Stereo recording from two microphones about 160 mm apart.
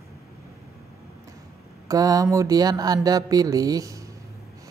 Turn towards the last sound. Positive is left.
turn(degrees=-20)  # may be behind; listen again after turning